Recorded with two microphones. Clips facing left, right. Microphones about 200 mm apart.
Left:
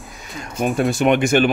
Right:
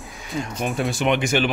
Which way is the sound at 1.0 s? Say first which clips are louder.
Left 5 dB; 50° left (ahead or behind).